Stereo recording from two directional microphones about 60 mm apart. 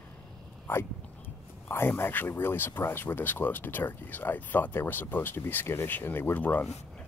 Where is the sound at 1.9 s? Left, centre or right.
Left.